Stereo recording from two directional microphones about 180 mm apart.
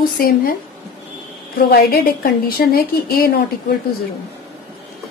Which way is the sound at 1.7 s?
60° left (ahead or behind).